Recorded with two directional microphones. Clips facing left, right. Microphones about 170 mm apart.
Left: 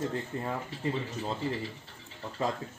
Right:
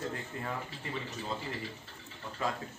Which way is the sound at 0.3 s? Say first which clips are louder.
Left 5 dB; 30° left (ahead or behind).